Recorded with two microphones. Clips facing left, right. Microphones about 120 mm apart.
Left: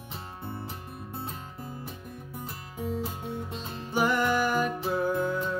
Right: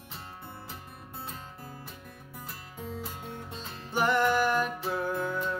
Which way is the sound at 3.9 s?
5° left (ahead or behind).